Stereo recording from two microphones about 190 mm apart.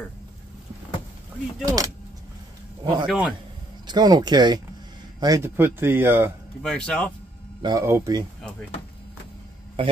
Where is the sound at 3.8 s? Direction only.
20° right (ahead or behind).